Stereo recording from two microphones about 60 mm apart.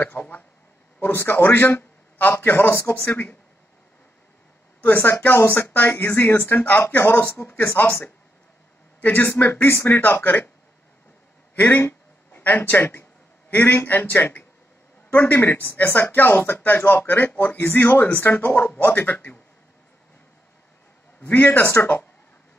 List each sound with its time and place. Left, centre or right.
0.0 s a sound: left
1.1 s a man's voice: left
4.8 s speech: left
9.0 s speech: left
9.8 s speech: left
11.5 s a man's voice: left
21.2 s speech: left